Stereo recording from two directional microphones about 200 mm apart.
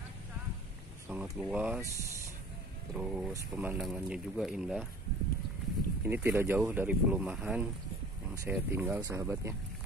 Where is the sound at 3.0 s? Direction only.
5° right (ahead or behind).